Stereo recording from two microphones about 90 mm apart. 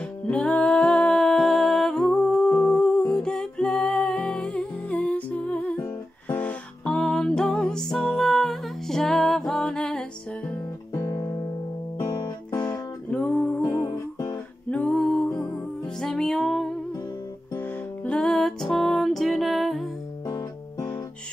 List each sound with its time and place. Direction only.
0.3 s music: 15° left (ahead or behind)
6.9 s music: 5° left (ahead or behind)
11.0 s music: 40° left (ahead or behind)
12.5 s music: 15° left (ahead or behind)
13.6 s music: 30° left (ahead or behind)
14.7 s singing: 10° left (ahead or behind)
16.0 s music: 5° left (ahead or behind)
18.0 s music: 10° left (ahead or behind)